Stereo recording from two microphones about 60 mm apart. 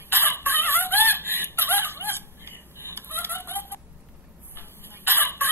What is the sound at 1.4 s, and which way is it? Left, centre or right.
Chicken, right.